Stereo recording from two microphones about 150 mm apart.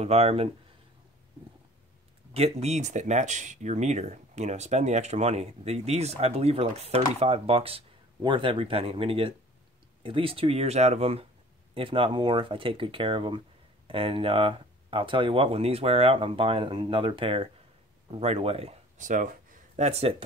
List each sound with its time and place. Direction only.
0.0 s speech: 45° right (ahead or behind)
2.3 s speech: 45° right (ahead or behind)